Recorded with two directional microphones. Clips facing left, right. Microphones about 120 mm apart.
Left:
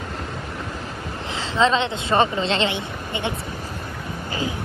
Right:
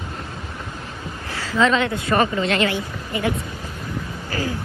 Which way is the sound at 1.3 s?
25° left (ahead or behind).